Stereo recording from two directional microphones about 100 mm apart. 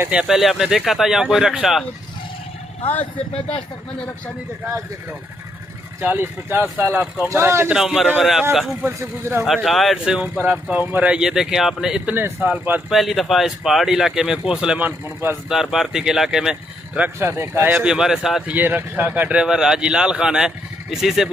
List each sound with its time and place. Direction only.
0.1 s speech: 5° right (ahead or behind)
2.9 s speech: 15° left (ahead or behind)
5.9 s speech: 20° right (ahead or behind)
7.7 s speech: 5° right (ahead or behind)
8.8 s speech: 25° right (ahead or behind)
9.4 s speech: centre (ahead or behind)
10.1 s speech: 15° right (ahead or behind)
12.2 s speech: 15° right (ahead or behind)
12.9 s speech: centre (ahead or behind)
14.8 s speech: 20° right (ahead or behind)
15.5 s speech: 5° right (ahead or behind); by 17.7 s 25° right (ahead or behind)
17.7 s speech: 5° right (ahead or behind)
18.5 s speech: 20° right (ahead or behind)